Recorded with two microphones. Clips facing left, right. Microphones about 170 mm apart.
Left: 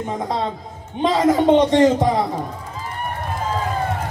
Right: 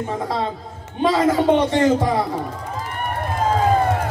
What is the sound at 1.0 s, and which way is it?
A man's voice, 20° left (ahead or behind).